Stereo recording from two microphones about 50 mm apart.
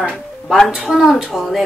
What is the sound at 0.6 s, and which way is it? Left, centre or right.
Speech, centre.